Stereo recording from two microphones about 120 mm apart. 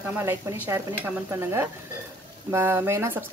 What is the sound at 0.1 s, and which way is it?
Speech, 20° right (ahead or behind).